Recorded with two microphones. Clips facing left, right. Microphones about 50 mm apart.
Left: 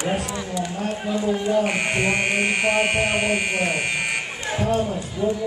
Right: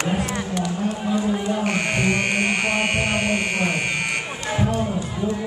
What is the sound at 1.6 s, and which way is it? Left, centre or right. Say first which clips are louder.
Buzzer: even; centre.